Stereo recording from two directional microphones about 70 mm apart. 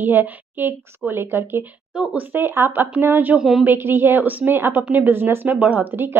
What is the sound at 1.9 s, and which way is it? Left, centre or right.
Speech, centre.